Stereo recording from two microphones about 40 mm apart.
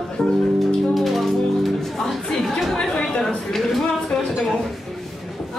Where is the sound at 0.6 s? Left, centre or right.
Centre.